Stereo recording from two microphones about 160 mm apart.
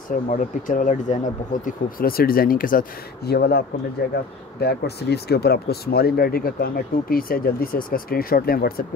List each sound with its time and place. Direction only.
0.1 s speech: 55° left (ahead or behind)